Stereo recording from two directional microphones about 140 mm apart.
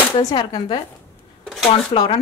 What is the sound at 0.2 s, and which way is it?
Speech, 30° left (ahead or behind).